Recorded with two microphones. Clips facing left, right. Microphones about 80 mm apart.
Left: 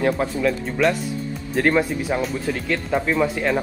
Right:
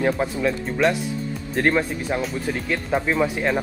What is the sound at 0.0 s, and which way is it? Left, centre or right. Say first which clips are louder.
Speech: left 1 dB; centre.